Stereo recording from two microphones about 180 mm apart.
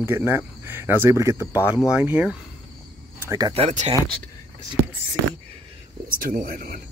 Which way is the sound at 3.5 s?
35° right (ahead or behind).